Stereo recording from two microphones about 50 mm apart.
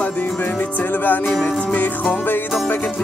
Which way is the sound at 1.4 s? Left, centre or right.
Left.